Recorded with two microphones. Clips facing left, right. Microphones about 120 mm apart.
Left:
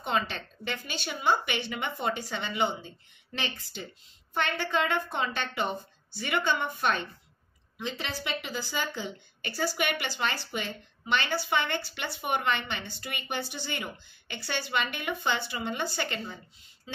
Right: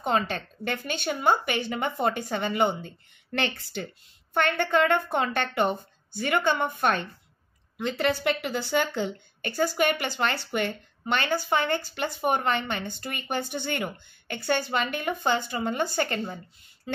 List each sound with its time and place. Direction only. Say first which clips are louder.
0.0 s speech: right 4 dB; 45° right (ahead or behind)
3.3 s a woman's voice: right 7 dB; 60° right (ahead or behind)